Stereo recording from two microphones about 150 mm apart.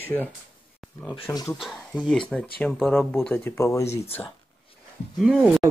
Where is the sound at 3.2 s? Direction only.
15° left (ahead or behind).